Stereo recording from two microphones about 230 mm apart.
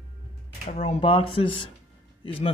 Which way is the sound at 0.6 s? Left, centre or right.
Left.